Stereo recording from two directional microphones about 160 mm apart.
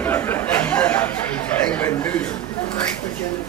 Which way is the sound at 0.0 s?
15° left (ahead or behind).